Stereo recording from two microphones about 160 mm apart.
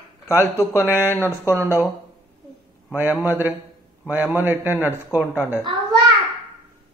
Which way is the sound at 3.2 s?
15° right (ahead or behind).